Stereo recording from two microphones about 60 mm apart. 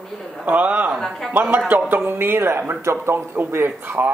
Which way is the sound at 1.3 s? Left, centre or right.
Right.